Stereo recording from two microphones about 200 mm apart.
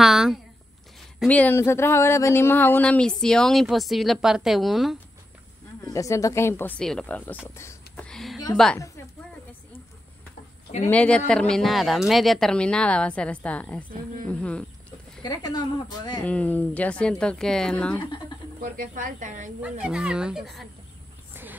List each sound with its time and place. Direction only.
0.0 s a sound: centre (ahead or behind)
1.2 s speech: 5° left (ahead or behind)
5.9 s speech: 15° left (ahead or behind)
7.4 s a sound: 15° left (ahead or behind)
8.7 s a woman's voice: 15° left (ahead or behind)
10.9 s speech: 5° left (ahead or behind)
15.2 s speech: 20° left (ahead or behind)
16.3 s speech: 10° left (ahead or behind)
18.6 s speech: 45° right (ahead or behind)
19.6 s speech: 5° right (ahead or behind)
21.3 s a sound: 10° right (ahead or behind)